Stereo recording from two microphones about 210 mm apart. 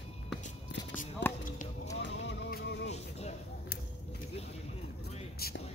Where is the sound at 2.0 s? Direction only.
60° left (ahead or behind).